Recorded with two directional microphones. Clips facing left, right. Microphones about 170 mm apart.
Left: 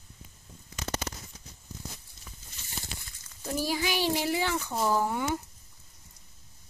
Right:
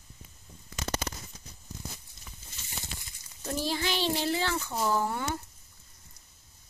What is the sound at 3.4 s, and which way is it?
Speech, 10° left (ahead or behind).